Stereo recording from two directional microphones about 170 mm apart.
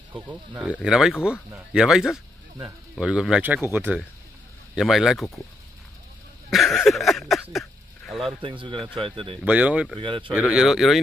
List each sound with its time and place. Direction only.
0.1 s speech: 10° right (ahead or behind)
6.5 s a sound: centre (ahead or behind)
8.4 s speech: 30° right (ahead or behind)
9.4 s speech: 10° right (ahead or behind)
9.9 s speech: 30° right (ahead or behind)
10.3 s speech: 5° right (ahead or behind)